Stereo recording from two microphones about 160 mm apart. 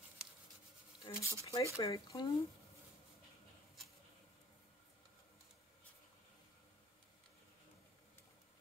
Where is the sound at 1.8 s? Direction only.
25° left (ahead or behind).